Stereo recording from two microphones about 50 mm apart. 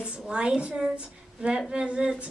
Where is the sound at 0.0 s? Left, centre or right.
Centre.